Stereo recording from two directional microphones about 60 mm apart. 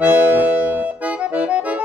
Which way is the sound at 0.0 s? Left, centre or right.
Right.